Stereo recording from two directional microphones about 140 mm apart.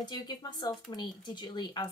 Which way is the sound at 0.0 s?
30° left (ahead or behind).